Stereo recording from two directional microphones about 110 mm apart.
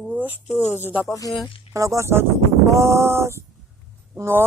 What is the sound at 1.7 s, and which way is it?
Speech, 25° right (ahead or behind).